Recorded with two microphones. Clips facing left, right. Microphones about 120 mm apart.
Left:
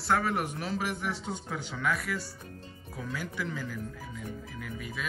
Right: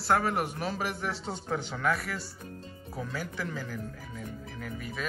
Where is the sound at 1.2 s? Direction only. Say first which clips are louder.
Right 3 dB; 40° right (ahead or behind).